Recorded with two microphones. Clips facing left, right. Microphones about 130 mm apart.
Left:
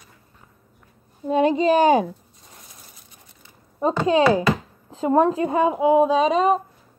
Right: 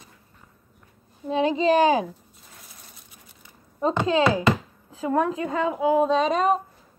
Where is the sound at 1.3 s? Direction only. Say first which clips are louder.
Left 3 dB; 50° left (ahead or behind).